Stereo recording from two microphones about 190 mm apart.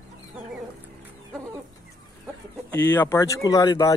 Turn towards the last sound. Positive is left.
turn(degrees=20)  # may be behind; listen again after turning